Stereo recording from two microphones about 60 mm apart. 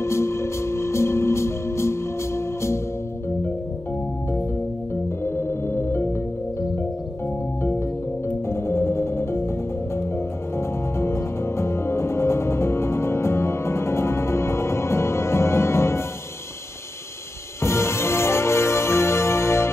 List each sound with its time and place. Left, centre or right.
0.0 s music: left
5.2 s music: left
8.5 s music: left
11.0 s music: left
17.6 s music: left